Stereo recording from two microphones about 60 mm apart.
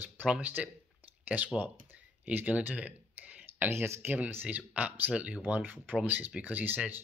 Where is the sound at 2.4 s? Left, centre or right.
Right.